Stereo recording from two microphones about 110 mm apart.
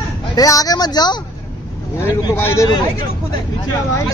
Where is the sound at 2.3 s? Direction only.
25° left (ahead or behind).